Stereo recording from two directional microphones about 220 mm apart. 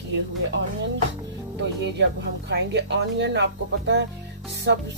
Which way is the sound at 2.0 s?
50° right (ahead or behind).